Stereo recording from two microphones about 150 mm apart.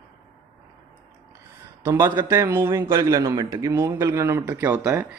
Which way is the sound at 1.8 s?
25° right (ahead or behind).